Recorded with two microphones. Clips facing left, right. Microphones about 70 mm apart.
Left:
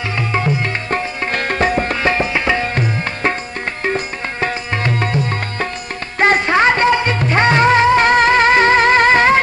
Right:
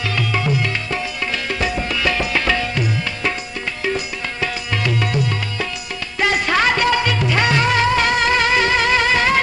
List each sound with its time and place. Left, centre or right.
0.3 s music: left